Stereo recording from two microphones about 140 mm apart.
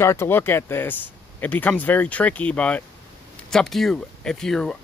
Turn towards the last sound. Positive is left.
turn(degrees=5)  # may be behind; listen again after turning